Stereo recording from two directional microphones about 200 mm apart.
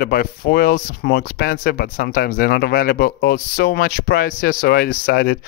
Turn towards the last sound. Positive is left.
turn(degrees=45)  # may be behind; listen again after turning